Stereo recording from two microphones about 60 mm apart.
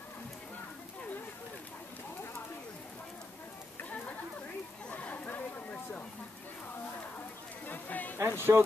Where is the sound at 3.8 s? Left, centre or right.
Left.